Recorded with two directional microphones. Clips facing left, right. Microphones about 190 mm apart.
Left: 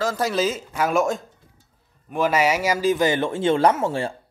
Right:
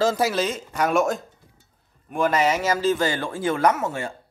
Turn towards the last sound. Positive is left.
turn(degrees=30)  # may be behind; listen again after turning